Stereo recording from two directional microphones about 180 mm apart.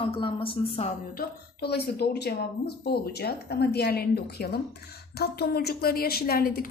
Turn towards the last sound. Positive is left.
turn(degrees=55)  # may be behind; listen again after turning